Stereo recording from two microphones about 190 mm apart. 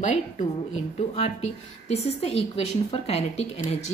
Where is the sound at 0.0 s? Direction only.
40° left (ahead or behind).